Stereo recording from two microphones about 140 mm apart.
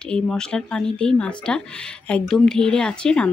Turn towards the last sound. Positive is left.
turn(degrees=5)  # may be behind; listen again after turning